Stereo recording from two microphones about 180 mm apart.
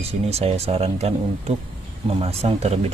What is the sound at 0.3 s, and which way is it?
Speech, 35° right (ahead or behind).